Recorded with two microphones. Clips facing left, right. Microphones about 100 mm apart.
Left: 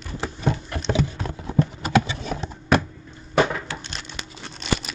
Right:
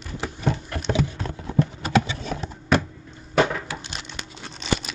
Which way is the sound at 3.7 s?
10° right (ahead or behind).